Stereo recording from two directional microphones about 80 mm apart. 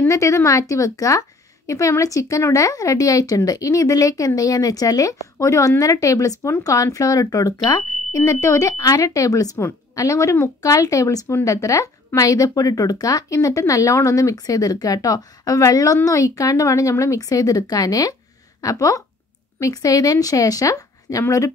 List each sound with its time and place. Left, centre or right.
0.0 s speech: left